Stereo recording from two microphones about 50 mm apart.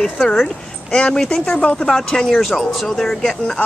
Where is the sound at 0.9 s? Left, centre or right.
Centre.